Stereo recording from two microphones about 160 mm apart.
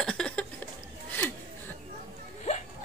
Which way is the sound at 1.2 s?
10° left (ahead or behind).